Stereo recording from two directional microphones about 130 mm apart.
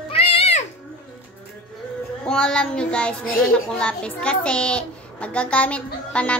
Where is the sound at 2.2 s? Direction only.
5° left (ahead or behind).